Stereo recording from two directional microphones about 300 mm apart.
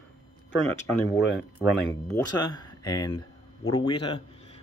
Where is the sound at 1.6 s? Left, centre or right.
Centre.